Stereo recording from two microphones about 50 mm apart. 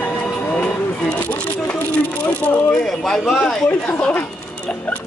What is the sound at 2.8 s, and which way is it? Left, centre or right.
Speech, centre.